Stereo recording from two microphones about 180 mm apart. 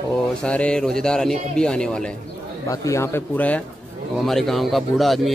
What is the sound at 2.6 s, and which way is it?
Speech, 15° left (ahead or behind).